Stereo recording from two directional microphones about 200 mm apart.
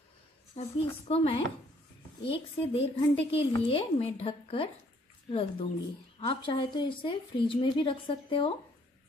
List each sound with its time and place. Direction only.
0.6 s speech: 30° left (ahead or behind)